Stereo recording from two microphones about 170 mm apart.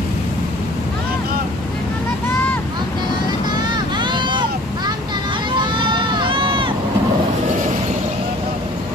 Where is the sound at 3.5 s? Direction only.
25° right (ahead or behind).